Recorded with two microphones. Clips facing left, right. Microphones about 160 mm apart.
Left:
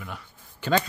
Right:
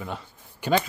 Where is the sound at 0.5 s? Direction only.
15° right (ahead or behind).